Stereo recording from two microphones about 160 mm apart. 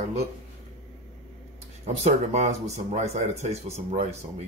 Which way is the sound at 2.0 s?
45° right (ahead or behind).